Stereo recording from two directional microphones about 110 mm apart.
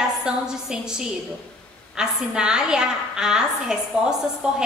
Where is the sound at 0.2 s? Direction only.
5° right (ahead or behind).